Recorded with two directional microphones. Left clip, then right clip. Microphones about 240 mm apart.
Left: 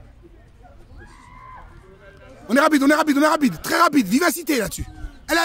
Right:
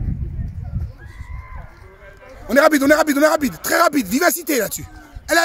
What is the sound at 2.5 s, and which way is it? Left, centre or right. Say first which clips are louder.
A man's voice: right 3 dB; centre.